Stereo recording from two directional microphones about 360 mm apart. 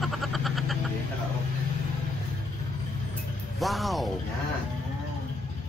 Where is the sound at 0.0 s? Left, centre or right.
Centre.